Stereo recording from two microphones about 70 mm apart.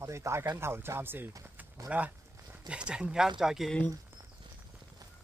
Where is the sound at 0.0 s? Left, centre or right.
Right; by 3.7 s centre.